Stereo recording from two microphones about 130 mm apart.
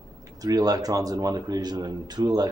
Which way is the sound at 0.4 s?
30° right (ahead or behind).